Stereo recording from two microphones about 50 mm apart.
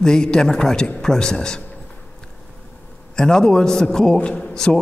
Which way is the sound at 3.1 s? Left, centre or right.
Centre.